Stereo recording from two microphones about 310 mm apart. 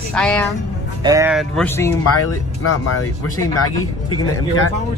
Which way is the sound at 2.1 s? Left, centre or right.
Left.